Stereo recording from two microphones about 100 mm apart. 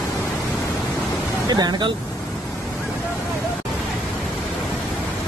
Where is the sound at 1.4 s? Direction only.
45° right (ahead or behind).